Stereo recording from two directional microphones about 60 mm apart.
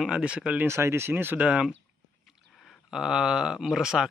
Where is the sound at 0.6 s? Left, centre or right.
Right.